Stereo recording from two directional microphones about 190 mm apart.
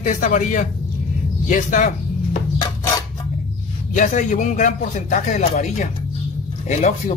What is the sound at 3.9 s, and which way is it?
Speech, 40° left (ahead or behind).